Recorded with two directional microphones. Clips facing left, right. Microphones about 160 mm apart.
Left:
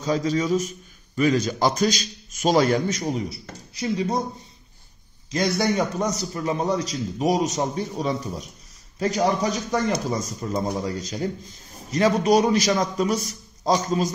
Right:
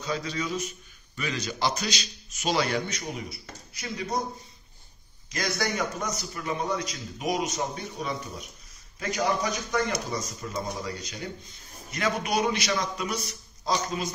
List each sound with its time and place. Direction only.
0.0 s a man's voice: 40° left (ahead or behind)
5.3 s a man's voice: 25° left (ahead or behind)